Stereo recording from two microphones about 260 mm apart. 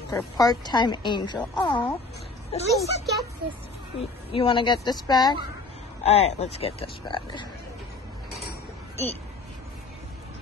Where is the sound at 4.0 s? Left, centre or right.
Centre.